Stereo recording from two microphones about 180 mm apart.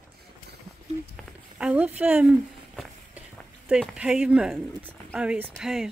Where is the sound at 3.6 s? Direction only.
5° right (ahead or behind).